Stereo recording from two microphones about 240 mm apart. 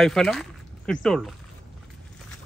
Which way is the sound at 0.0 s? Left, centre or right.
Centre.